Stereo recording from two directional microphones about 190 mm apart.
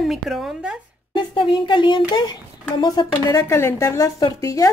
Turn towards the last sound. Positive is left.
turn(degrees=15)  # may be behind; listen again after turning